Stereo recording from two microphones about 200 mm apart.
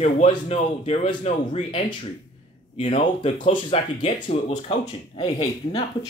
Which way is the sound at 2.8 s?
25° left (ahead or behind).